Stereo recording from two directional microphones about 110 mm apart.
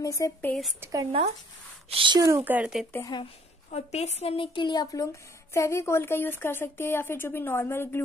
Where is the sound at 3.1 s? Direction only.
40° left (ahead or behind).